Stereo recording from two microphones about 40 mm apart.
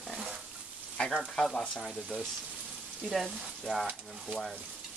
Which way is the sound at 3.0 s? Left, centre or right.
Centre.